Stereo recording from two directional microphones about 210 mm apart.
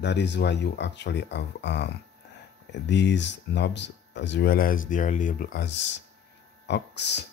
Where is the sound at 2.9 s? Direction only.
55° left (ahead or behind).